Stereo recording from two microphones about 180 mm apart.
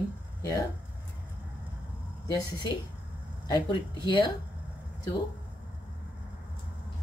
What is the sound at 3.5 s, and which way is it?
Speech, 25° left (ahead or behind).